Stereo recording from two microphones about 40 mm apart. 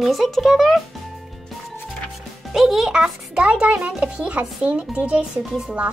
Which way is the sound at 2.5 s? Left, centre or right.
Centre.